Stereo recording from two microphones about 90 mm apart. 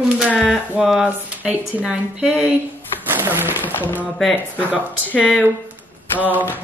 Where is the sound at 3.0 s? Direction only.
25° right (ahead or behind).